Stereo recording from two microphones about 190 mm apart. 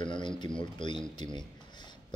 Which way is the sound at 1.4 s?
25° left (ahead or behind).